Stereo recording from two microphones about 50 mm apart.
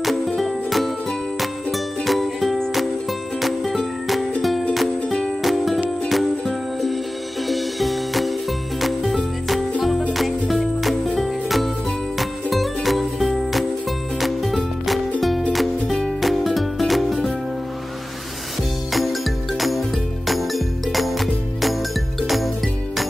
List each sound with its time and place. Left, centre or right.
0.0 s music: centre
5.0 s music: centre
5.4 s music: centre
18.9 s music: centre